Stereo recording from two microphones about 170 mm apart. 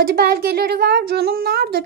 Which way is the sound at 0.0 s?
65° right (ahead or behind).